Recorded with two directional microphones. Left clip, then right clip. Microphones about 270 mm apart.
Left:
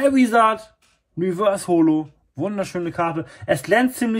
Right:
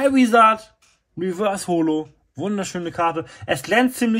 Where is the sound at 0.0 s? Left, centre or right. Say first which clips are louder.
Right 2 dB; right.